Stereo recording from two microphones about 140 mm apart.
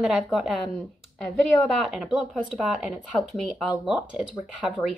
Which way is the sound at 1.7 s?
Centre (ahead or behind).